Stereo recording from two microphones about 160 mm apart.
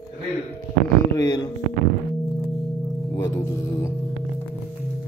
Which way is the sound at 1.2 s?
20° left (ahead or behind).